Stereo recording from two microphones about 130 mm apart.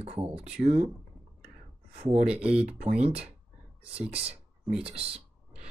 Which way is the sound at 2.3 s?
10° right (ahead or behind).